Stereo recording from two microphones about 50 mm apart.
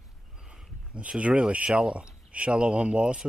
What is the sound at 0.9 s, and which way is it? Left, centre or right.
Speech, right.